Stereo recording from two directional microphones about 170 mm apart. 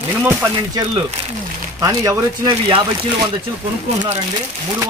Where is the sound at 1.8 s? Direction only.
20° right (ahead or behind).